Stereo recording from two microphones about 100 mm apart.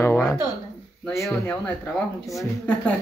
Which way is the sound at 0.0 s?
20° left (ahead or behind).